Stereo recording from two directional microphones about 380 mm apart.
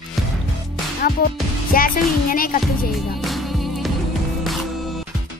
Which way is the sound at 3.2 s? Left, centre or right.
Centre.